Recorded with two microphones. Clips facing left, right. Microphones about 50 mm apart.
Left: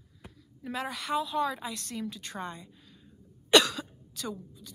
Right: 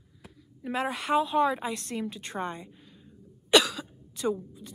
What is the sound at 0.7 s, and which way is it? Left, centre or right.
A woman's voice, right.